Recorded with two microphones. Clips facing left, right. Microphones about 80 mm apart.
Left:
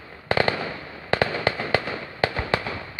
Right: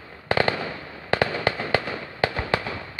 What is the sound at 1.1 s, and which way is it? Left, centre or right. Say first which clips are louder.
Fireworks: even; centre.